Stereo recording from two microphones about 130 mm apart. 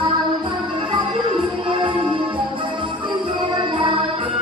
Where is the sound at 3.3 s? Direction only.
35° right (ahead or behind).